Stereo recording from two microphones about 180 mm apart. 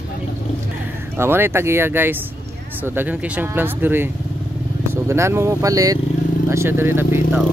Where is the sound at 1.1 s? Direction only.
10° right (ahead or behind).